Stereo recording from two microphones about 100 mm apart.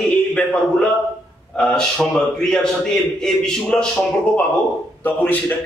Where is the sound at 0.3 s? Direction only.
10° left (ahead or behind).